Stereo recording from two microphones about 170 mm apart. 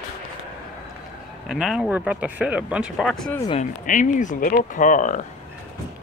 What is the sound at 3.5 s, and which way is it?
Speech, 50° left (ahead or behind).